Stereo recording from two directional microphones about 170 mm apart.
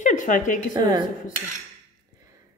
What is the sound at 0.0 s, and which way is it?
Speech, 50° left (ahead or behind).